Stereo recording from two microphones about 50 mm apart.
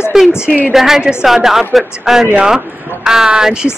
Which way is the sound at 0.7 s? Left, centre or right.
Centre.